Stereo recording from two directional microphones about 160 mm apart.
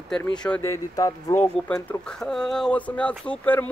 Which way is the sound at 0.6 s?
20° left (ahead or behind).